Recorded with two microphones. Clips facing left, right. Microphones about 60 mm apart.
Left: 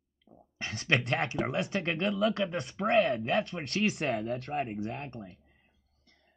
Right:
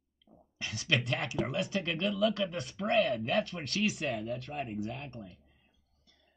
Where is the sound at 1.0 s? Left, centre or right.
Left.